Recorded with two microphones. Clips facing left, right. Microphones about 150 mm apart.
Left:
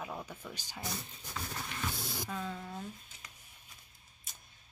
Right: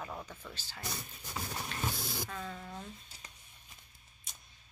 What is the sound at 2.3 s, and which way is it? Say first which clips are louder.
Speech: left 3 dB; 5° left (ahead or behind).